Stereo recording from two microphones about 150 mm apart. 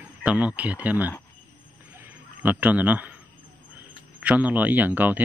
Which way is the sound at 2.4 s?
10° right (ahead or behind).